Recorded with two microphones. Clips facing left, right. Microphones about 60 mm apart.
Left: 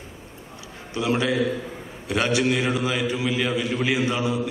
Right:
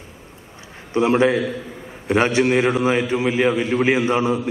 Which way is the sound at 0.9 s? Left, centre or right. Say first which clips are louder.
Right 6 dB; right.